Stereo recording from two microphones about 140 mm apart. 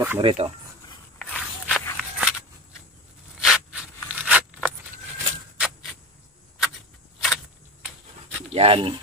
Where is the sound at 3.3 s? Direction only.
5° right (ahead or behind).